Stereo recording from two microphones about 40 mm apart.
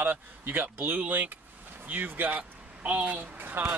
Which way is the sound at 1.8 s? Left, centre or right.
Right.